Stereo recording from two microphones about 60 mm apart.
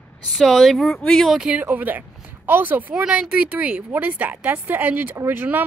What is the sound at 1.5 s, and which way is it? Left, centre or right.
A woman's voice, right.